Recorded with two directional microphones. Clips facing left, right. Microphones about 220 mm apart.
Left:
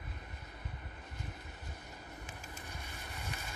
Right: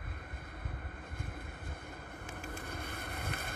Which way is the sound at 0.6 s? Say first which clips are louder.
Right 3 dB; 55° right (ahead or behind).